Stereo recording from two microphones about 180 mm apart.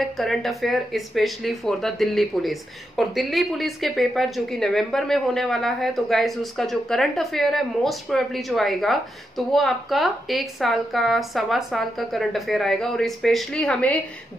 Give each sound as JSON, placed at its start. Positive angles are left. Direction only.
{"t": 0.0, "sound": "speech", "side_deg": 0}